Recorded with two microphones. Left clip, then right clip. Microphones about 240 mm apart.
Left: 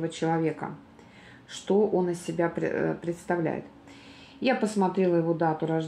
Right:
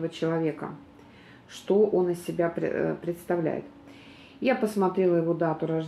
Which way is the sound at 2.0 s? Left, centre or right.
Left.